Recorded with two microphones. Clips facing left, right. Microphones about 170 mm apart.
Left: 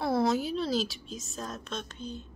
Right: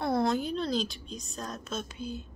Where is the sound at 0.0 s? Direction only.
Centre (ahead or behind).